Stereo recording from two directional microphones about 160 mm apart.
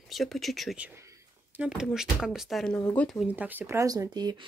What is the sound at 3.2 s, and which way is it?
Speech, 10° right (ahead or behind).